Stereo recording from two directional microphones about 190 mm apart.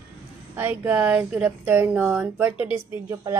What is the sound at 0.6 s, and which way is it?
Speech, 10° right (ahead or behind).